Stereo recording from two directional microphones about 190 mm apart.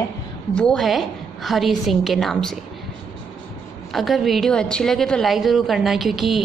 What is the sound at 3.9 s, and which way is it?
A woman's voice, centre (ahead or behind).